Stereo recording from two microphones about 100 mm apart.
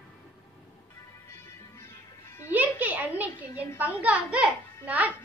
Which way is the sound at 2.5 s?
15° right (ahead or behind).